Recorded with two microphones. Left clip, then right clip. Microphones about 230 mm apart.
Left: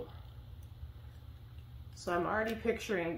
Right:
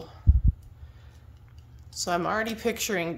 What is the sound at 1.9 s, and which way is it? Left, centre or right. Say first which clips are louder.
Speech: right 7 dB; right.